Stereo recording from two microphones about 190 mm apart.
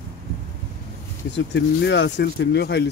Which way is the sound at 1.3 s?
65° left (ahead or behind).